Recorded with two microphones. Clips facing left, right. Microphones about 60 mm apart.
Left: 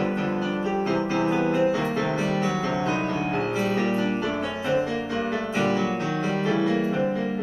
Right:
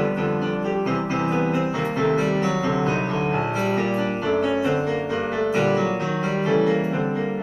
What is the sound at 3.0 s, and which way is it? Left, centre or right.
Music, right.